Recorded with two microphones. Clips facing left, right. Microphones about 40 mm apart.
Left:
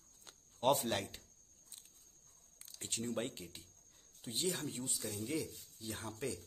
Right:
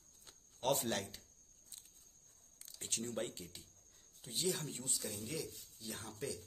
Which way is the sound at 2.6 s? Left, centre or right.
Centre.